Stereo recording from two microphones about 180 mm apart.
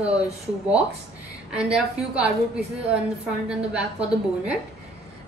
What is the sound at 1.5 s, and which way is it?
A woman's voice, 5° right (ahead or behind).